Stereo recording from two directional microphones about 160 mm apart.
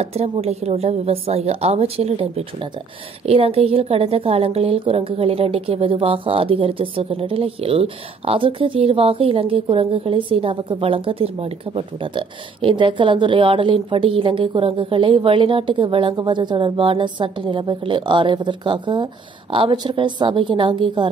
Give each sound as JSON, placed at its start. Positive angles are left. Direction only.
{"t": 0.0, "sound": "a woman's voice", "side_deg": -40}